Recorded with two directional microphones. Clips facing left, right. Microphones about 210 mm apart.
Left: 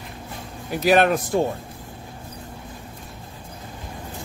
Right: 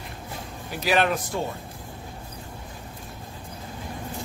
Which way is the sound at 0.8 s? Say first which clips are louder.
Left 6 dB; 50° left (ahead or behind).